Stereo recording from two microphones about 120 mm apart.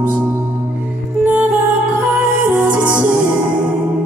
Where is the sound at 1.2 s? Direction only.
15° right (ahead or behind).